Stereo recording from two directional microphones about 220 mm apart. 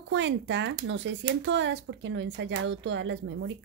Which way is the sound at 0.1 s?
55° right (ahead or behind).